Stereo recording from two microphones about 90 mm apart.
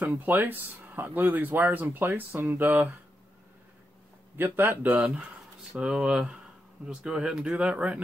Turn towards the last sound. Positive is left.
turn(degrees=-15)  # may be behind; listen again after turning